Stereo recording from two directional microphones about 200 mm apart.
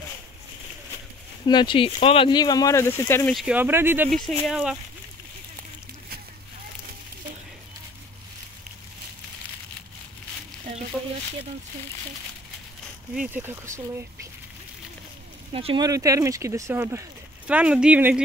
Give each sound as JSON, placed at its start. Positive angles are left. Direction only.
{"t": 1.4, "sound": "speech", "side_deg": 20}
{"t": 3.3, "sound": "speech", "side_deg": -5}
{"t": 13.1, "sound": "speech", "side_deg": -10}
{"t": 15.5, "sound": "speech", "side_deg": -25}